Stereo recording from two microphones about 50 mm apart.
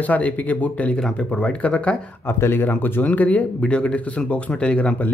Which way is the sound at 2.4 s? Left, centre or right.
Left.